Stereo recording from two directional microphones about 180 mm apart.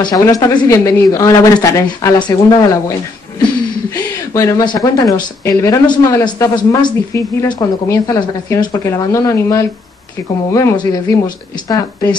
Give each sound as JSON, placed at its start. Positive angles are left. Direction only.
{"t": 0.1, "sound": "speech", "side_deg": 20}